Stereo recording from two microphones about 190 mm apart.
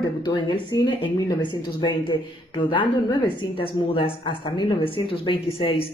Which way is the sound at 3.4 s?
25° left (ahead or behind).